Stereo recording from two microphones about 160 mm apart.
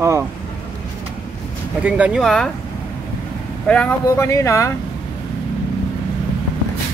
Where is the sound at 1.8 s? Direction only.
5° right (ahead or behind).